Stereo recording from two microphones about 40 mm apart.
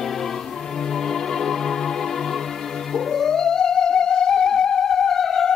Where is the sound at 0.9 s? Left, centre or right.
Centre.